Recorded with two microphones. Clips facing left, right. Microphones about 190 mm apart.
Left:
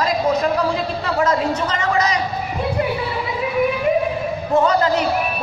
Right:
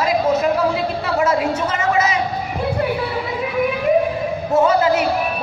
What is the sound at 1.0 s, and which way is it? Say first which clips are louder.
A man's voice: even; 10° right (ahead or behind).